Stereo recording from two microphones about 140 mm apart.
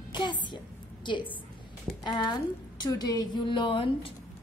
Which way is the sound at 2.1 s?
35° left (ahead or behind).